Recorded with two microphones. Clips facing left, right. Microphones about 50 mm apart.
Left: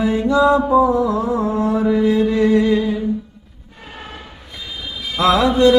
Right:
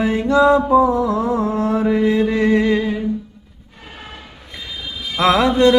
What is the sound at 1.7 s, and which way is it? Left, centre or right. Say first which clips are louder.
Mantra: even; right.